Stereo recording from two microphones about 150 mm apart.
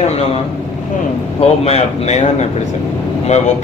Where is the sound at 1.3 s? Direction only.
45° left (ahead or behind).